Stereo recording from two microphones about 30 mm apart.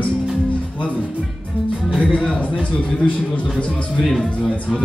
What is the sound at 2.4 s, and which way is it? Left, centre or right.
A man's voice, left.